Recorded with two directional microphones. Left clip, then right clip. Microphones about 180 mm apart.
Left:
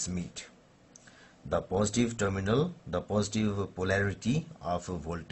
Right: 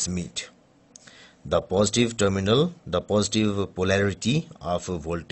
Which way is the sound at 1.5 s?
45° right (ahead or behind).